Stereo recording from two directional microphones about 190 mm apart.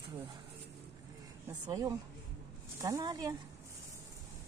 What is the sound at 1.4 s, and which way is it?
Speech, 20° right (ahead or behind).